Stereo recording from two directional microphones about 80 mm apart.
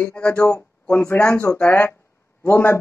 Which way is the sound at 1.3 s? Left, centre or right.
Left.